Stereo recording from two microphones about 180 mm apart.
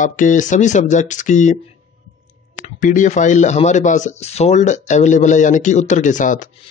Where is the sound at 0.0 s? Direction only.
45° left (ahead or behind).